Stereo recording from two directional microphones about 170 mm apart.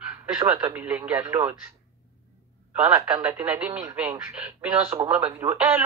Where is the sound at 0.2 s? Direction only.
20° right (ahead or behind).